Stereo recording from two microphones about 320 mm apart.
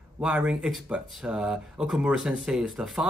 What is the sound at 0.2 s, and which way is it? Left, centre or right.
Speech, centre.